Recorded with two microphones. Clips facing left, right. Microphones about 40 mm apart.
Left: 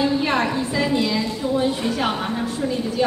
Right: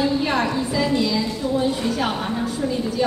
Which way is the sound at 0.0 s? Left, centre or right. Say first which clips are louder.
Left 1 dB; centre.